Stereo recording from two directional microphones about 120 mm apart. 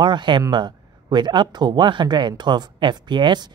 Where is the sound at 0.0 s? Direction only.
40° right (ahead or behind).